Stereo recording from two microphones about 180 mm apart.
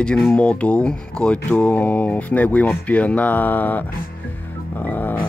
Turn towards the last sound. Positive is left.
turn(degrees=10)  # may be behind; listen again after turning